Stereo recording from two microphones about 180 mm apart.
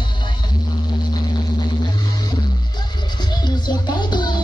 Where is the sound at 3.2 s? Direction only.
25° left (ahead or behind).